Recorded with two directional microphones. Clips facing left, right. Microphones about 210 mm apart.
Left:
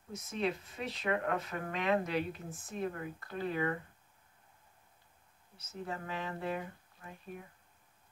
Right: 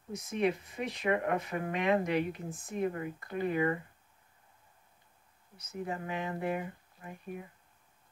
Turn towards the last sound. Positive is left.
turn(degrees=-15)  # may be behind; listen again after turning